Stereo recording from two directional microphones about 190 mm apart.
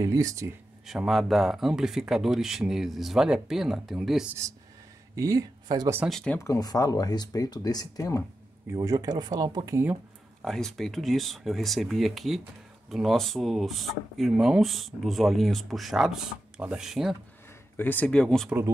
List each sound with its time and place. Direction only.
0.0 s speech: 15° right (ahead or behind)
0.8 s speech: centre (ahead or behind)
5.1 s speech: 15° right (ahead or behind)
6.0 s speech: 5° left (ahead or behind)
6.4 s speech: 20° left (ahead or behind)
8.7 s speech: 20° right (ahead or behind)
10.4 s speech: centre (ahead or behind)
17.7 s speech: 10° left (ahead or behind)